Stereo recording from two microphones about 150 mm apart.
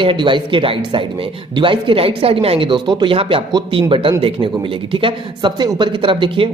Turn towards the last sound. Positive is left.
turn(degrees=-35)  # may be behind; listen again after turning